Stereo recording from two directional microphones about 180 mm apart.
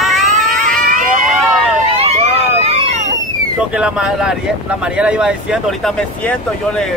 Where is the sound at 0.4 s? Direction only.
50° right (ahead or behind).